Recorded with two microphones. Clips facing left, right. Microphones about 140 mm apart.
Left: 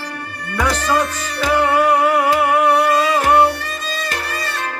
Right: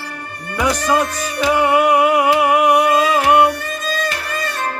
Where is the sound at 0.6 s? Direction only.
15° right (ahead or behind).